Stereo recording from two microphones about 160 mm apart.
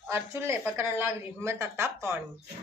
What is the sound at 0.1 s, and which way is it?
A woman's voice, 15° right (ahead or behind).